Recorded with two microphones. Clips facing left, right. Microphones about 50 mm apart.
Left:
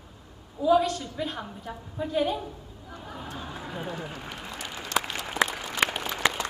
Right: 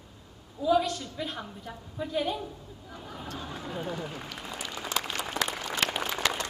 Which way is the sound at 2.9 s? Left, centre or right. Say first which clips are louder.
Left 1 dB; centre.